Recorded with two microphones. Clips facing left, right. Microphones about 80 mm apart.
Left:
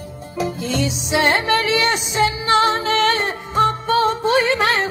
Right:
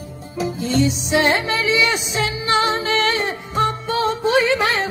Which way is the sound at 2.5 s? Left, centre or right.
Left.